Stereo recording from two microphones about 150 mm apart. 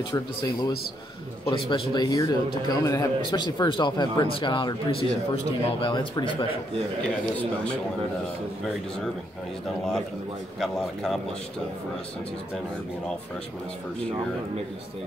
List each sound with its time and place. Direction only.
0.1 s a man's voice: 20° left (ahead or behind)
1.5 s speech: 30° left (ahead or behind)
7.0 s a man's voice: 5° left (ahead or behind)
10.6 s a man's voice: centre (ahead or behind)